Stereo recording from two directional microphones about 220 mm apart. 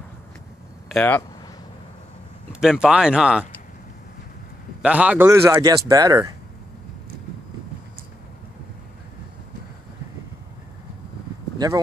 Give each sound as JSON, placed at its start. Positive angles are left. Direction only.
{"t": 0.8, "sound": "speech", "side_deg": 5}
{"t": 2.6, "sound": "speech", "side_deg": -5}
{"t": 4.8, "sound": "speech", "side_deg": -5}
{"t": 11.5, "sound": "a sound", "side_deg": -15}